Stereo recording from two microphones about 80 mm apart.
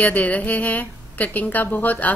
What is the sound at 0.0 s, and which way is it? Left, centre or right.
A woman's voice, centre.